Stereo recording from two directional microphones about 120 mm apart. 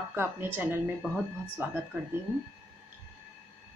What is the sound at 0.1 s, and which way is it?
A woman's voice, 20° right (ahead or behind).